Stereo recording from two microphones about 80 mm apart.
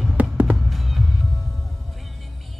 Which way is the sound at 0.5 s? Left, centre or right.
Centre.